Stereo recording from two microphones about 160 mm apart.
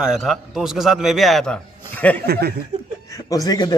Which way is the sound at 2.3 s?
80° right.